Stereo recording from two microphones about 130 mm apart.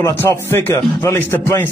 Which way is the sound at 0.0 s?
20° left (ahead or behind).